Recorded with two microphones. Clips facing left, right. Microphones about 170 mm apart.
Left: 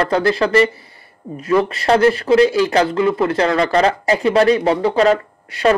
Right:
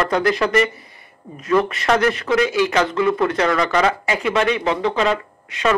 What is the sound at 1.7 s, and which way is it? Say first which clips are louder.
Speech: left 4 dB; 30° left (ahead or behind).